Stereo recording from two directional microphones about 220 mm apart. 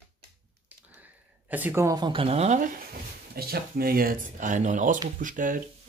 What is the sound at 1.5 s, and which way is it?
Speech, 10° right (ahead or behind).